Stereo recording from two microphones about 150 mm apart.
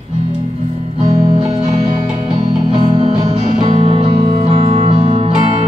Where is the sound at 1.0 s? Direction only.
45° right (ahead or behind).